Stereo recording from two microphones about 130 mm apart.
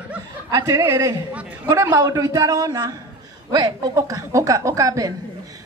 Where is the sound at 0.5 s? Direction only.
25° right (ahead or behind).